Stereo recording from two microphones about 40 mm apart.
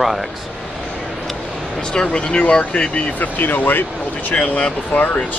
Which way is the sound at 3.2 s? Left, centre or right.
Left.